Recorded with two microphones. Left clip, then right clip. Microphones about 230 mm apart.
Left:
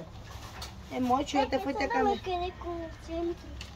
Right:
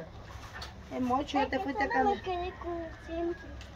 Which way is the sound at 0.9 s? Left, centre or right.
Centre.